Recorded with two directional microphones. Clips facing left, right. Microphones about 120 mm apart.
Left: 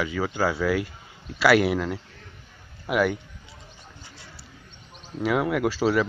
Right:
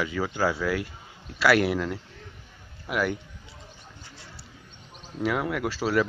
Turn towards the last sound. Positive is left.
turn(degrees=5)  # may be behind; listen again after turning